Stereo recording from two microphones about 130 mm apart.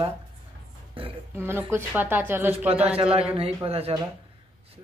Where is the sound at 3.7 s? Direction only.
50° right (ahead or behind).